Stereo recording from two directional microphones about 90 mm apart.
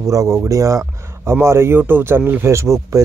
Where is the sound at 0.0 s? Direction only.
35° right (ahead or behind).